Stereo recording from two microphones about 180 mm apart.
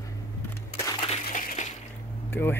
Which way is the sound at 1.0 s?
35° left (ahead or behind).